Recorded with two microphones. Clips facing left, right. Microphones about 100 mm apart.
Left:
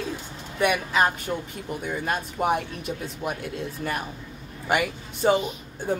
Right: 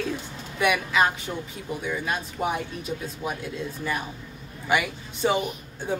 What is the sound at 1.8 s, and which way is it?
A woman's voice, 50° left (ahead or behind).